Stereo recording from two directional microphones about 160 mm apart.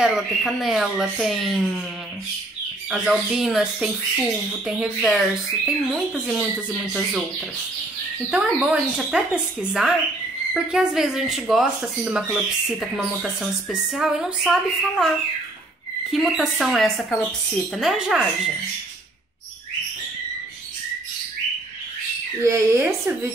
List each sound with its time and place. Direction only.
0.0 s speech: centre (ahead or behind)
2.9 s speech: centre (ahead or behind)
8.3 s speech: 5° right (ahead or behind)
22.4 s speech: 20° right (ahead or behind)